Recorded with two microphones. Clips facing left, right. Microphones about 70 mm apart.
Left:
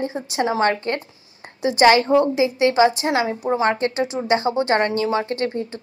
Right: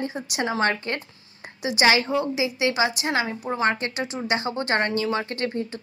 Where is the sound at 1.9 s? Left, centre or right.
Left.